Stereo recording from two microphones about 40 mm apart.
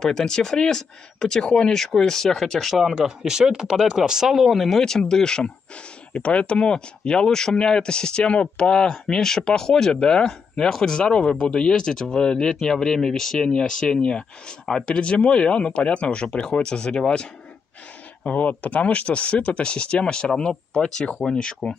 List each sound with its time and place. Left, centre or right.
0.0 s speech: centre
1.7 s speech: centre
2.7 s speech: centre
3.9 s speech: centre
4.3 s speech: centre
6.1 s speech: left
16.3 s speech: centre
18.3 s speech: left; by 21.5 s centre